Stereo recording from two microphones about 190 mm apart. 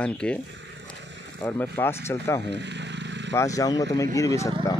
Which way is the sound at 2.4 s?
65° right (ahead or behind).